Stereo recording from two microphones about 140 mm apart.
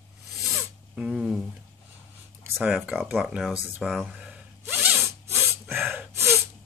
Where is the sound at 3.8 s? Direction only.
Centre (ahead or behind).